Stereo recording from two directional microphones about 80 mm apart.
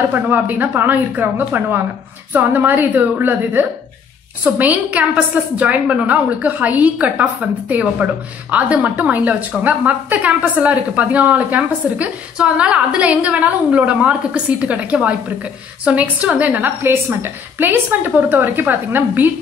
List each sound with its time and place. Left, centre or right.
0.1 s a woman's voice: right